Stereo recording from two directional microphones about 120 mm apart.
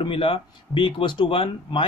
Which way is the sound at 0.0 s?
45° left (ahead or behind).